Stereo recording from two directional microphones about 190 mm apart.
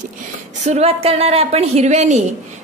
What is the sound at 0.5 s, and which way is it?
A woman's voice, 35° right (ahead or behind).